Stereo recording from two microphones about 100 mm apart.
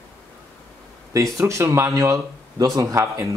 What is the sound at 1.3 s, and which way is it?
Speech, 30° right (ahead or behind).